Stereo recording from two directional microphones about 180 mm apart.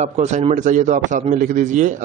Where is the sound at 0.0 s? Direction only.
40° right (ahead or behind).